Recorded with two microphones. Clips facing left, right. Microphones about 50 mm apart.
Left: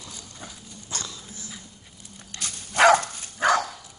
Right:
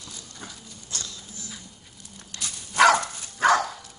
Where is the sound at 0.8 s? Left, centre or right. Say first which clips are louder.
Left 3 dB; left.